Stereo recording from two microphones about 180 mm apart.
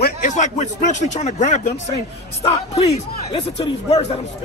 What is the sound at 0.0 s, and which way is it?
Speech, 45° left (ahead or behind).